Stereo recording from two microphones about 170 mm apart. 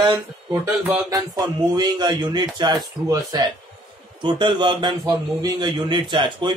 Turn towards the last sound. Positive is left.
turn(degrees=-25)  # may be behind; listen again after turning